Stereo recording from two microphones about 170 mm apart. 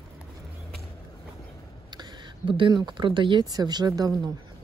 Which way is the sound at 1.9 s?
30° right (ahead or behind).